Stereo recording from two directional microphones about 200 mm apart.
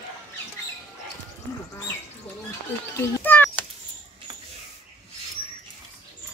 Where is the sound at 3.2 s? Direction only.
10° left (ahead or behind).